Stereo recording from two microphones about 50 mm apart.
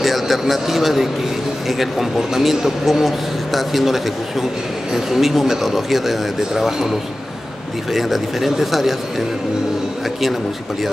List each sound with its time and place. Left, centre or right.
0.0 s a man's voice: centre